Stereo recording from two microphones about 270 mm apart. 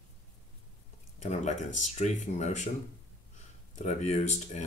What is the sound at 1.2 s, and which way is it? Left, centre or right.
Speech, left.